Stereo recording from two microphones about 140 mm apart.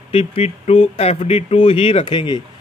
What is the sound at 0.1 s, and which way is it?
Speech, 45° left (ahead or behind).